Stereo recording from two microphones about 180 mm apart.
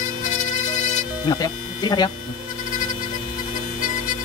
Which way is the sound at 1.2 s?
20° left (ahead or behind).